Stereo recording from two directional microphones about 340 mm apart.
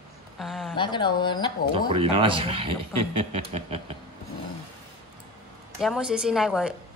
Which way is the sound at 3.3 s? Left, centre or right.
Centre.